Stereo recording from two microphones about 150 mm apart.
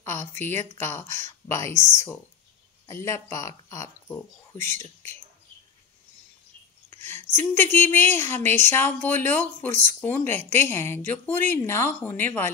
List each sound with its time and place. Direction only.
0.0 s speech: 15° left (ahead or behind)
2.9 s speech: 20° left (ahead or behind)
7.3 s speech: 15° left (ahead or behind)